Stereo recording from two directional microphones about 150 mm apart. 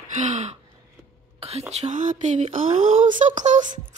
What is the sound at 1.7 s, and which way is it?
Speech, 50° right (ahead or behind).